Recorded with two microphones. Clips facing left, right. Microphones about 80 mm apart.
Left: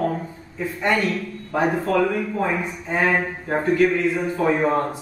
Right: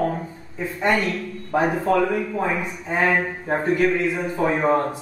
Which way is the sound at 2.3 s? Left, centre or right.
Centre.